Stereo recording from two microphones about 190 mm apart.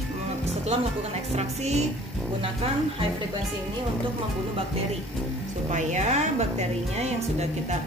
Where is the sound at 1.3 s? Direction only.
35° right (ahead or behind).